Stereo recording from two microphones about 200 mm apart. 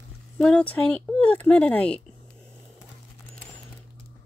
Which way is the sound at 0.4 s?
5° left (ahead or behind).